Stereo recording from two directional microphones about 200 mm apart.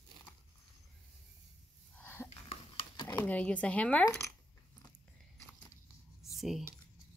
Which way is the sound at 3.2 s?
5° left (ahead or behind).